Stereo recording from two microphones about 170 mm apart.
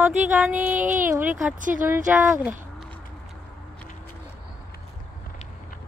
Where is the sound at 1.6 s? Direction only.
50° right (ahead or behind).